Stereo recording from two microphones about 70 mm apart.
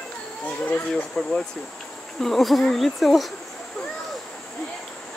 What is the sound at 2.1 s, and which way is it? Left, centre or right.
Speech, centre.